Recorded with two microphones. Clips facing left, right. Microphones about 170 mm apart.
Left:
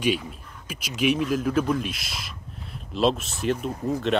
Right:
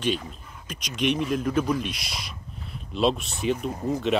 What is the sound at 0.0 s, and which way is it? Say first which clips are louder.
Speech: left 2 dB; 10° left (ahead or behind).